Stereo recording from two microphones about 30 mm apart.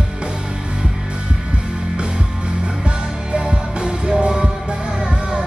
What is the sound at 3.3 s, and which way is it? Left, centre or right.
Music, right.